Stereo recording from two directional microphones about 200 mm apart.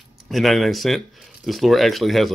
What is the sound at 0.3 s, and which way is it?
Speech, centre (ahead or behind).